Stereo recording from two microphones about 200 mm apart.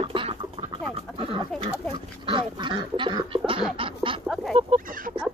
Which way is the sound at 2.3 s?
25° right (ahead or behind).